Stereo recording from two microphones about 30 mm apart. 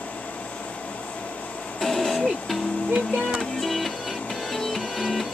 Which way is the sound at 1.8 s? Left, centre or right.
Centre.